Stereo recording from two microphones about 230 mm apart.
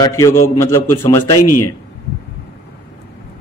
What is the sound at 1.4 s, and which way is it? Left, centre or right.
Speech, left.